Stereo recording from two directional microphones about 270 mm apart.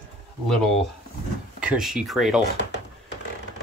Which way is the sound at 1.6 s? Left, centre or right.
Centre.